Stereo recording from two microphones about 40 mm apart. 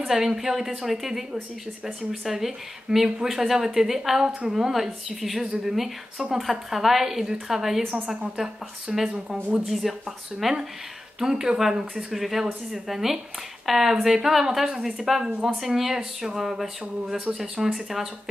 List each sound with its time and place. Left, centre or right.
0.0 s a woman's voice: centre
9.7 s a woman's voice: centre